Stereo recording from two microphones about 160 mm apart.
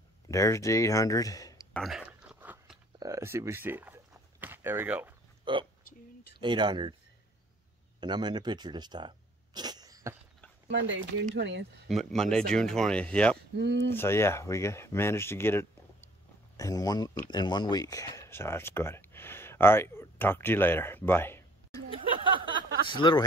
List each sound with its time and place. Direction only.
0.3 s speech: 20° left (ahead or behind)
1.7 s chewing: centre (ahead or behind)
3.0 s speech: 20° right (ahead or behind)
5.4 s speech: 30° right (ahead or behind)
8.0 s speech: 30° right (ahead or behind)
10.7 s speech: 90° right
11.9 s speech: centre (ahead or behind)
13.6 s speech: 90° right
13.8 s speech: 15° left (ahead or behind)
21.9 s a sound: 30° right (ahead or behind)
22.8 s speech: 30° left (ahead or behind)